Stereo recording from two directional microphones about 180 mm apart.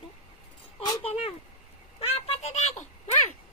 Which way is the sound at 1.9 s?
35° left (ahead or behind).